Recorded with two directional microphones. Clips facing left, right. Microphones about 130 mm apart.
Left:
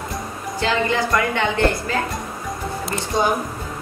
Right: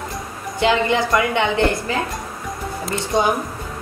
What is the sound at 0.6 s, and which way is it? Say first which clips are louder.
A woman's voice: right 3 dB; 20° right (ahead or behind).